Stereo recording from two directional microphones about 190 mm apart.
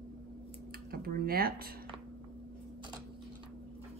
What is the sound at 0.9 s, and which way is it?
Speech, 50° right (ahead or behind).